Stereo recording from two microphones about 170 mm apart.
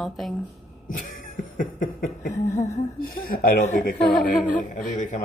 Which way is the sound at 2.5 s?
20° left (ahead or behind).